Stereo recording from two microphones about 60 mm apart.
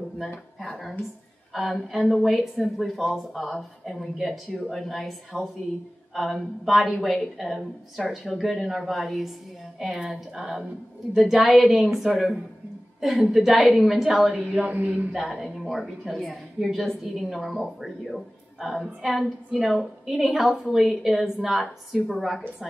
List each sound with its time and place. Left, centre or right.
0.6 s a woman's voice: centre
14.7 s speech: right
15.1 s a woman's voice: centre